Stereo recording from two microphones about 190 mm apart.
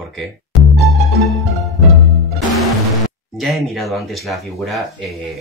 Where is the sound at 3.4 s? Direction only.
Centre (ahead or behind).